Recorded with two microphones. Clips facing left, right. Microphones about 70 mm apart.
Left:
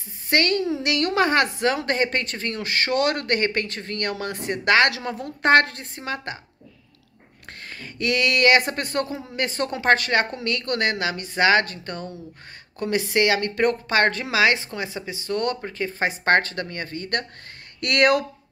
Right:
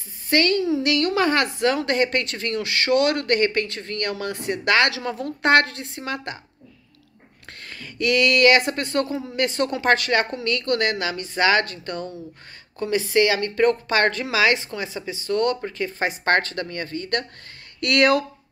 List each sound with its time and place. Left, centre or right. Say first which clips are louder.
0.3 s a woman's voice: right 2 dB; left
7.6 s a woman's voice: right 2 dB; left
12.8 s a woman's voice: right 2 dB; left